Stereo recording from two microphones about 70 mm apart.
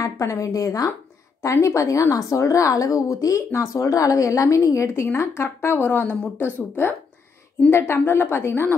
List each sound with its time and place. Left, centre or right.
0.0 s a woman's voice: left
1.4 s a woman's voice: left
5.8 s speech: left
7.7 s a woman's voice: left